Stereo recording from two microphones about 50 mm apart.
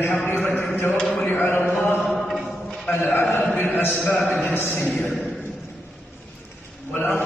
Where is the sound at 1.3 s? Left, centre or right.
Left.